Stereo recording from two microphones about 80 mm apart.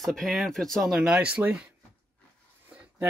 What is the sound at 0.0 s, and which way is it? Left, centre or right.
Speech, centre.